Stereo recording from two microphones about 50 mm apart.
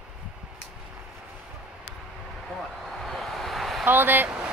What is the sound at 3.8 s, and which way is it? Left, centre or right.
Speech, right.